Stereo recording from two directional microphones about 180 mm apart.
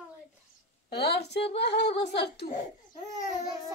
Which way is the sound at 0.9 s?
65° left (ahead or behind).